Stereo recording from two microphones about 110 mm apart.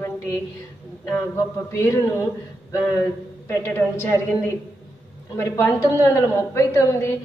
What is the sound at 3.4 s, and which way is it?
Speech, 20° left (ahead or behind).